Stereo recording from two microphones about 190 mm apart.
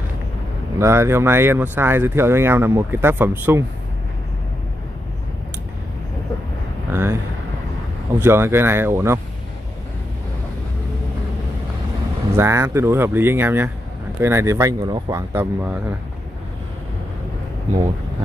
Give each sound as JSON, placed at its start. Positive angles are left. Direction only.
{"t": 0.7, "sound": "speech", "side_deg": -15}
{"t": 6.9, "sound": "speech", "side_deg": -10}
{"t": 8.2, "sound": "speech", "side_deg": -15}
{"t": 12.4, "sound": "speech", "side_deg": -15}